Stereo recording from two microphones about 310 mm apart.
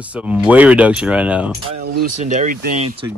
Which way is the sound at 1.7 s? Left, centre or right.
Right.